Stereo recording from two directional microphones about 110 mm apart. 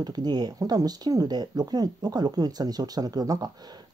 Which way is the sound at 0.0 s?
40° right (ahead or behind).